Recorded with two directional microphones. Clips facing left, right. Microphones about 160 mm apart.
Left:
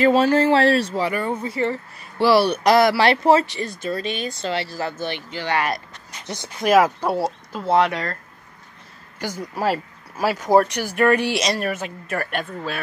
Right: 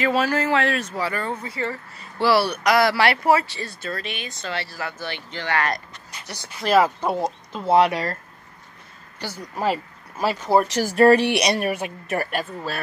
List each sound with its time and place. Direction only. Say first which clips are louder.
0.0 s speech: left 6 dB; 30° left (ahead or behind)
1.0 s speech: left 4 dB; 15° left (ahead or behind)
2.6 s speech: left 3 dB; 30° left (ahead or behind)
4.1 s speech: left 7 dB; 30° left (ahead or behind)
4.5 s speech: left 3 dB; 20° left (ahead or behind)
7.7 s speech: right 1 dB; 25° right (ahead or behind)
9.2 s speech: left 2 dB; 10° left (ahead or behind)
10.8 s speech: right 3 dB; 35° right (ahead or behind)
11.2 s a woman's voice: right 1 dB; 20° right (ahead or behind)
12.3 s speech: even; 5° right (ahead or behind)